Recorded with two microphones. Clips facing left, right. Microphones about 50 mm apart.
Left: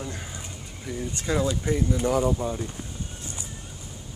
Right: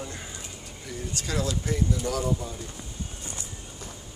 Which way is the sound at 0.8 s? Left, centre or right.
Left.